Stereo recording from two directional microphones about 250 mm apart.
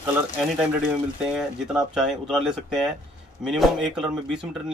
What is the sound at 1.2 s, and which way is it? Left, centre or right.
Speech, centre.